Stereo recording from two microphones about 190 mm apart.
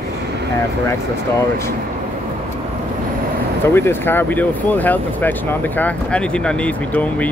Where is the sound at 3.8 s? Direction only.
10° left (ahead or behind).